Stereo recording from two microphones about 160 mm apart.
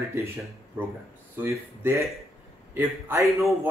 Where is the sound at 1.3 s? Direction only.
15° right (ahead or behind).